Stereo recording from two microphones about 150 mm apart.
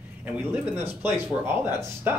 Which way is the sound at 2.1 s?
15° right (ahead or behind).